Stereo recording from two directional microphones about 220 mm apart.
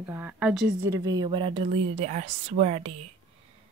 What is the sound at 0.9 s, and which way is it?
A woman's voice, 15° right (ahead or behind).